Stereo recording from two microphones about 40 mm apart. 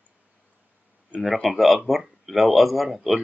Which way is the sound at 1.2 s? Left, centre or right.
Centre.